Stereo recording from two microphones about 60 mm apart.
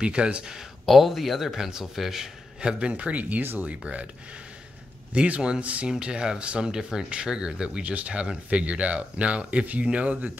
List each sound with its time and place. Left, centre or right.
0.0 s speech: centre
0.8 s speech: centre
5.1 s speech: right